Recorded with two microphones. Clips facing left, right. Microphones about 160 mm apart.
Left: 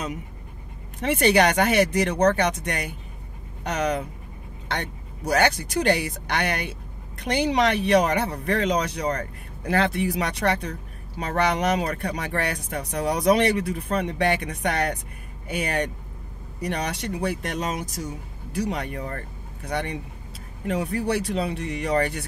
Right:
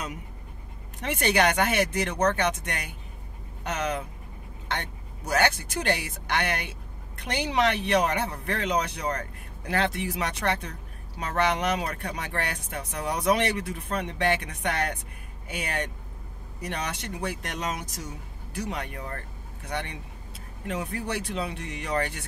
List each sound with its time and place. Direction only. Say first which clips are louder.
1.0 s speech: left 5 dB; 30° left (ahead or behind)